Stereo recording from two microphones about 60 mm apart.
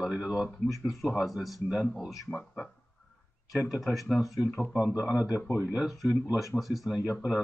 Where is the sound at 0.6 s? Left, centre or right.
Centre.